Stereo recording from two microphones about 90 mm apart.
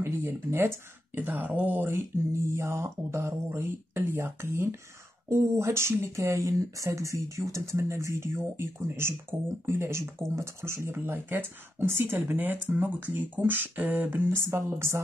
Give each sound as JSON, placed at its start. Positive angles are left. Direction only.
{"t": 0.0, "sound": "speech", "side_deg": -25}